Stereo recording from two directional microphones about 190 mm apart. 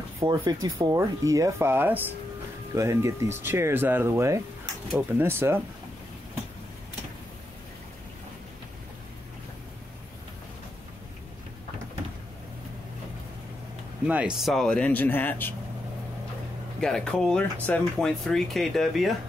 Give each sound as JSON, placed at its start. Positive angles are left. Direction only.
{"t": 0.2, "sound": "speech", "side_deg": -20}
{"t": 14.0, "sound": "speech", "side_deg": -5}
{"t": 16.8, "sound": "speech", "side_deg": 5}